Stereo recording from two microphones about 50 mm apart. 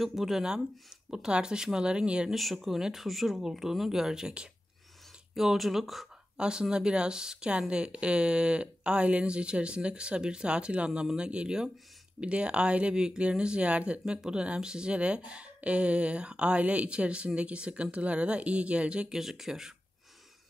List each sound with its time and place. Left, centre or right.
0.0 s speech: centre
2.2 s speech: centre
5.3 s speech: centre
6.3 s speech: centre
19.1 s speech: centre